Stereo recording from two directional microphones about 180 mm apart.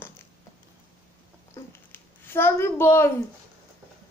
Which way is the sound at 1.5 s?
10° left (ahead or behind).